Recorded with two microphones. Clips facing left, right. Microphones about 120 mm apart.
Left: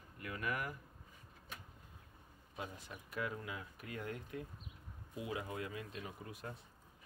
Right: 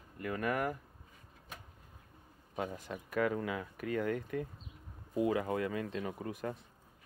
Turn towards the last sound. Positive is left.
turn(degrees=-60)  # may be behind; listen again after turning